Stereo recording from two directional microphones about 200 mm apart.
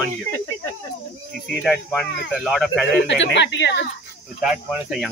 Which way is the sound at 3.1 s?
65° left (ahead or behind).